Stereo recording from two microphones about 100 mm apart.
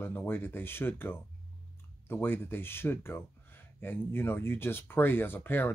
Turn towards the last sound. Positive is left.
turn(degrees=20)  # may be behind; listen again after turning